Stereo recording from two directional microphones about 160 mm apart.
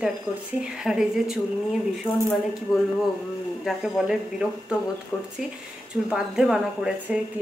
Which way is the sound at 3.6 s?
Centre (ahead or behind).